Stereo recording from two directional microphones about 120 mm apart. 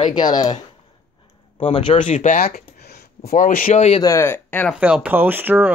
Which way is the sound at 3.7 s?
65° left (ahead or behind).